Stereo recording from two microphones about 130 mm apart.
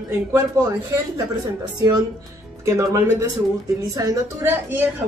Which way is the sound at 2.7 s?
20° right (ahead or behind).